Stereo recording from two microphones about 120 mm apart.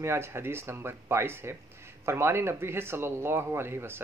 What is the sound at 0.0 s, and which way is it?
Speech, 20° right (ahead or behind).